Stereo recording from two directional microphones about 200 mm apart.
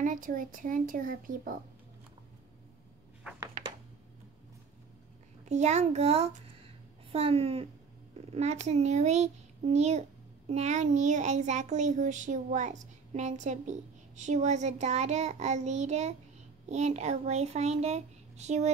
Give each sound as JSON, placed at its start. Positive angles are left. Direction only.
{"t": 0.0, "sound": "speech", "side_deg": -40}
{"t": 5.5, "sound": "a child's voice", "side_deg": -35}